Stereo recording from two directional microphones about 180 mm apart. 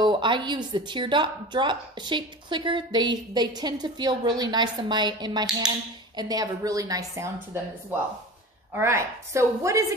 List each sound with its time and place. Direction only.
0.0 s a woman's voice: 25° right (ahead or behind)
8.7 s a woman's voice: 15° right (ahead or behind)